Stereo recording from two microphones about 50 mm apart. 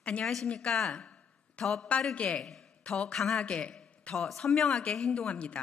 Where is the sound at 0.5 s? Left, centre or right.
Centre.